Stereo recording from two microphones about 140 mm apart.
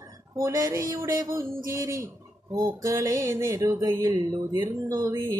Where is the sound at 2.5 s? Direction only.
25° right (ahead or behind).